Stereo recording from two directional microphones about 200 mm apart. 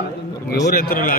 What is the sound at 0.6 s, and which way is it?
Speech, 45° left (ahead or behind).